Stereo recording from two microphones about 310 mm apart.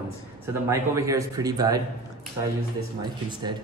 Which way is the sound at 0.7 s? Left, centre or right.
Centre.